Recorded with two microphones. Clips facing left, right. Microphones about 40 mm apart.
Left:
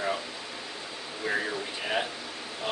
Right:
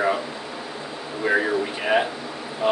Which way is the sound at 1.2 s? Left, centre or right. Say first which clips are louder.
Right 9 dB; right.